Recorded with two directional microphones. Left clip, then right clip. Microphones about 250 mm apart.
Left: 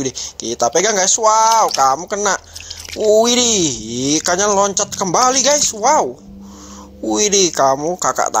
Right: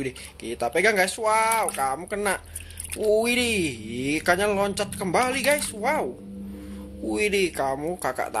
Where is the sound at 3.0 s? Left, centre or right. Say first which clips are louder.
Left 10 dB; centre.